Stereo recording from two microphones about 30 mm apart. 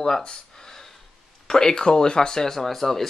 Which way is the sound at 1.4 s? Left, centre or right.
Left.